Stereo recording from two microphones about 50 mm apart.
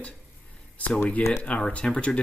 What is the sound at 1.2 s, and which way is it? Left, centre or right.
Speech, left.